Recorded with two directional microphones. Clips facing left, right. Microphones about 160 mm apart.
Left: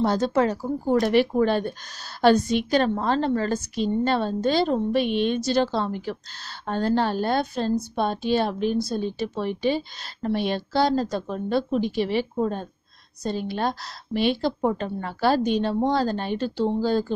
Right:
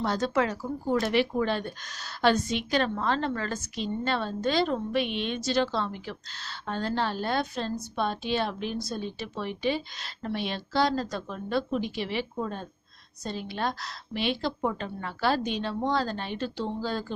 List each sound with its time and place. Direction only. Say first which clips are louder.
0.0 s a woman's voice: left 5 dB; 35° left (ahead or behind)